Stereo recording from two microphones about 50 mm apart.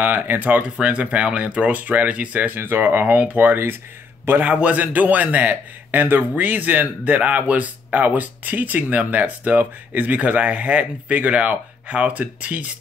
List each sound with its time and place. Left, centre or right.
0.0 s speech: right
0.6 s speech: right
2.5 s speech: right